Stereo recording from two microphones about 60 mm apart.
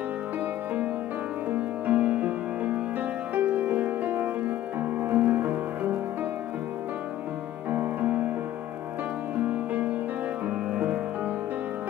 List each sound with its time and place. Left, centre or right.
1.5 s music: right
7.7 s music: right
9.4 s music: right